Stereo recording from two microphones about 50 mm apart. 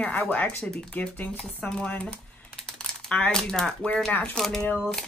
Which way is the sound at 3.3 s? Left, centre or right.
Centre.